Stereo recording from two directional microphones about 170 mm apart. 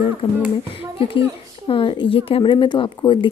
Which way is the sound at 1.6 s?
30° left (ahead or behind).